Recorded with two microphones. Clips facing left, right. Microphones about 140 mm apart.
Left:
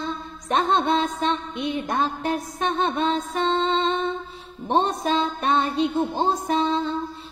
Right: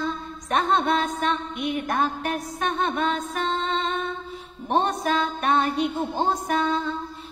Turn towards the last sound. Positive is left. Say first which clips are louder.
# left 2 dB
turn(degrees=20)  # may be behind; listen again after turning